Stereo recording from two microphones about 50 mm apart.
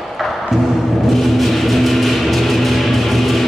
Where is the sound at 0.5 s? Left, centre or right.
Centre.